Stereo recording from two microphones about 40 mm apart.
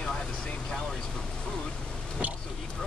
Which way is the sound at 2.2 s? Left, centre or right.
Right.